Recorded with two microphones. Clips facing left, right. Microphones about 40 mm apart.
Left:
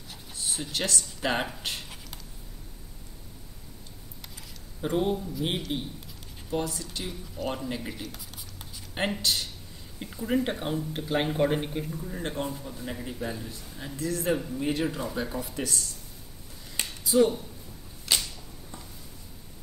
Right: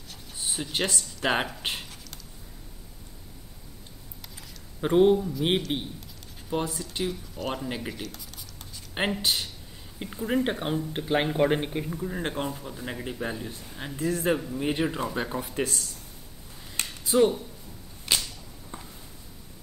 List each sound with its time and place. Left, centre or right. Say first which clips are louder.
0.4 s speech: right 2 dB; right
4.8 s a man's voice: right 7 dB; right
8.0 s writing: right 1 dB; centre
8.9 s a man's voice: right 1 dB; centre
17.1 s speech: even; right
18.1 s a sound: right 1 dB; centre
18.7 s a sound: right 4 dB; right